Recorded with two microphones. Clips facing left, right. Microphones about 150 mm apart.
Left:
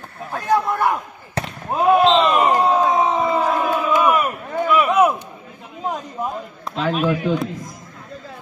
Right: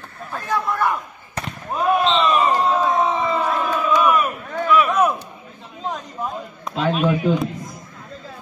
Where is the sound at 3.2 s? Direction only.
15° left (ahead or behind).